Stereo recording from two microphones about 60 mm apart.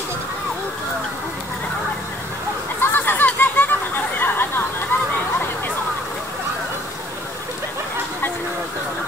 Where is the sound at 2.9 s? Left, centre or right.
Left.